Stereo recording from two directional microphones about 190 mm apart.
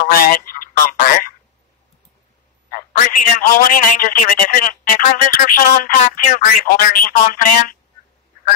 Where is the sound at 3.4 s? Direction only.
45° left (ahead or behind).